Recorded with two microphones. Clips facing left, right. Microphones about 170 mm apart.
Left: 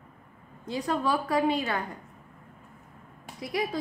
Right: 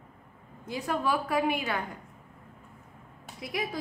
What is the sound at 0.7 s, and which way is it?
A woman's voice, 10° right (ahead or behind).